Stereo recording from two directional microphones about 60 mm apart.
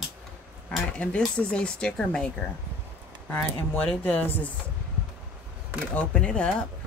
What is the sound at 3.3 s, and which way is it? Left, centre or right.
Speech, left.